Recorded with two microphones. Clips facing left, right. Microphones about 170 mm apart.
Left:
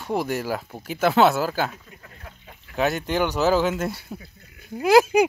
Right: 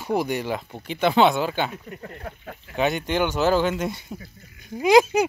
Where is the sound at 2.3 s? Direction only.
65° right (ahead or behind).